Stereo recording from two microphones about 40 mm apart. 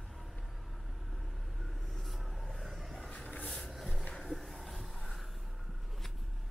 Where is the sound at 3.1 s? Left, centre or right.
Left.